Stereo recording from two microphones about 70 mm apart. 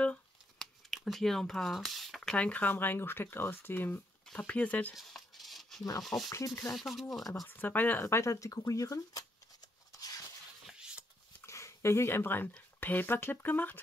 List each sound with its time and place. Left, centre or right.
0.0 s crumpling: centre
0.8 s speech: centre
2.3 s speech: centre
2.7 s speech: left
4.9 s a sound: centre
6.3 s speech: left
6.7 s speech: centre
7.4 s speech: left
8.1 s speech: left
9.9 s a sound: left
10.7 s a sound: centre
11.4 s a sound: left
12.8 s speech: left